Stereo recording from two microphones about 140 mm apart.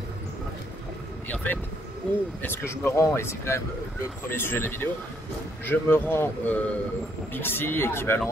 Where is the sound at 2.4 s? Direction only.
15° left (ahead or behind).